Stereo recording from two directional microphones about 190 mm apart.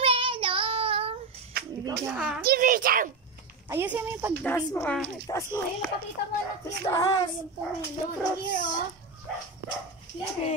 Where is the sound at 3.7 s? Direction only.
10° right (ahead or behind).